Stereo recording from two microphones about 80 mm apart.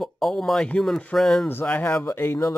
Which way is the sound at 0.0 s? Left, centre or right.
Centre.